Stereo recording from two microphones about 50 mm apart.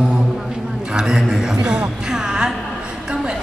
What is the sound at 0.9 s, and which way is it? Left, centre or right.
A woman's voice, centre.